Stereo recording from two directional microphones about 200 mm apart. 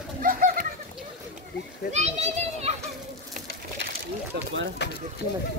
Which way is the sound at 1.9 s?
35° right (ahead or behind).